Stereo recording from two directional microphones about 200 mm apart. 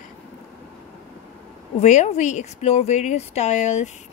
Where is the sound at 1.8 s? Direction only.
35° left (ahead or behind).